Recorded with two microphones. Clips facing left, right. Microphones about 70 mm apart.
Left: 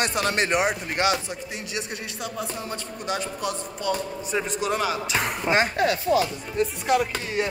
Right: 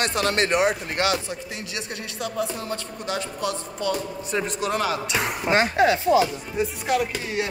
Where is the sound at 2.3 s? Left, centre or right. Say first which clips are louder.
Right 5 dB; centre.